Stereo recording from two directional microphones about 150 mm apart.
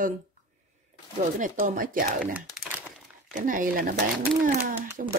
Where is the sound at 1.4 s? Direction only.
70° right (ahead or behind).